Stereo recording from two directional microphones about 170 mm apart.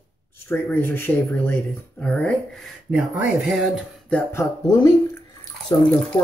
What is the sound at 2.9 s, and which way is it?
Speech, 5° right (ahead or behind).